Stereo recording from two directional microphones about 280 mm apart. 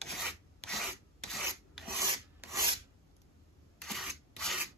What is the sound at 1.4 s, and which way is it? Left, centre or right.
Rub, centre.